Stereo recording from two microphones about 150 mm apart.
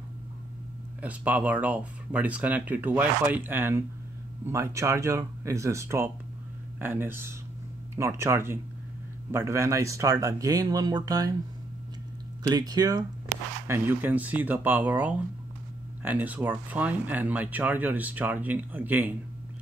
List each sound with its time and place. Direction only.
1.0 s speech: 10° right (ahead or behind)
12.4 s speech: 25° right (ahead or behind)
13.7 s speech: 10° right (ahead or behind)